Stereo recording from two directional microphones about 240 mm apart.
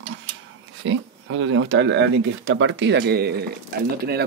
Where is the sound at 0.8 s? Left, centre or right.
Right.